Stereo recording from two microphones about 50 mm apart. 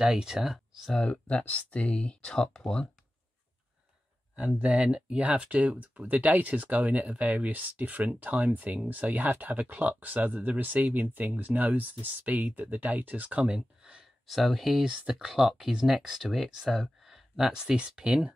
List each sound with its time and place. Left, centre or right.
0.1 s speech: centre
1.0 s speech: left
4.4 s speech: right
13.5 s speech: centre
14.2 s speech: centre
14.8 s speech: centre
15.2 s speech: centre